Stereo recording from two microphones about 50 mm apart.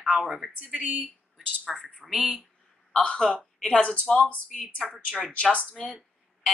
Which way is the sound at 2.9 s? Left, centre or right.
Centre.